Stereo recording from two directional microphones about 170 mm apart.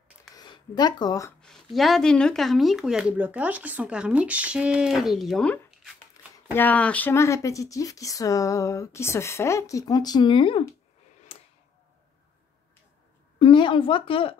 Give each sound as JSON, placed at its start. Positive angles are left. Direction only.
{"t": 0.4, "sound": "speech", "side_deg": 25}
{"t": 1.4, "sound": "speech", "side_deg": 0}
{"t": 13.4, "sound": "speech", "side_deg": 30}